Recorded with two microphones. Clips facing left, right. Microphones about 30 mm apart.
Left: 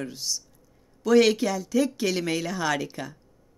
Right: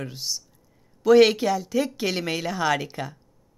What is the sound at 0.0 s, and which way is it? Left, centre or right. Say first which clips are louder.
Speech: even; centre.